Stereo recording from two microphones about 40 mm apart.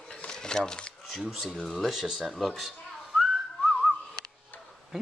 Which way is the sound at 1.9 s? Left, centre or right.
Centre.